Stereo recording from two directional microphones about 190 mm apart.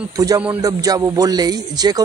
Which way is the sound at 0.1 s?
20° right (ahead or behind).